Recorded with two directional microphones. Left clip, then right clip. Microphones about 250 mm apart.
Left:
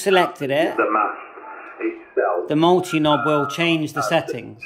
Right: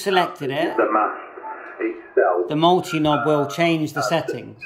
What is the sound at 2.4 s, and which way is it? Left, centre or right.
Speech, centre.